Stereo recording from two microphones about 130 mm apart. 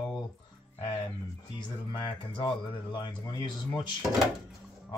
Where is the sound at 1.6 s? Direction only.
40° left (ahead or behind).